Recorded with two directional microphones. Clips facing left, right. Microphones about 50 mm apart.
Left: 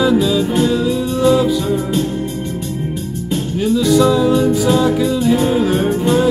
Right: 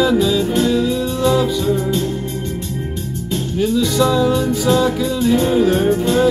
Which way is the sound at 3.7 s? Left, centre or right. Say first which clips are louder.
Left 4 dB; centre.